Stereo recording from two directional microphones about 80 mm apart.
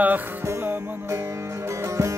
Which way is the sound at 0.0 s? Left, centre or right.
Right.